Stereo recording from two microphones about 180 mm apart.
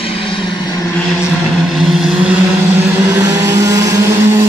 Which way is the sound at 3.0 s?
15° right (ahead or behind).